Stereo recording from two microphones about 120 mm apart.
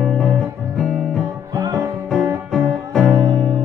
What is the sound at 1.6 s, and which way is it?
Music, 30° right (ahead or behind).